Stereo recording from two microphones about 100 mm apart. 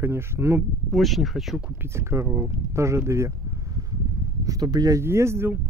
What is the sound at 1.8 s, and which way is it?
Speech, 25° right (ahead or behind).